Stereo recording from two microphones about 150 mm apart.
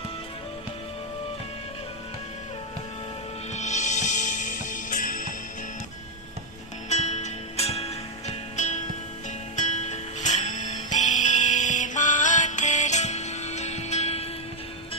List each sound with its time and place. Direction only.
3.5 s music: 50° left (ahead or behind)
6.9 s music: 50° left (ahead or behind)